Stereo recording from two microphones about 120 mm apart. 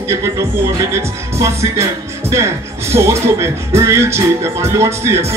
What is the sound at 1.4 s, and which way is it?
Speech, 25° right (ahead or behind).